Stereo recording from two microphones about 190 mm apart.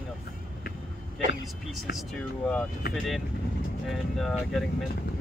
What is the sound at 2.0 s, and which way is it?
Speech, 5° left (ahead or behind).